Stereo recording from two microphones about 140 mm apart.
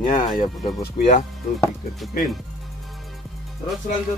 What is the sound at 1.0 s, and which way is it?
Speech, 75° left (ahead or behind).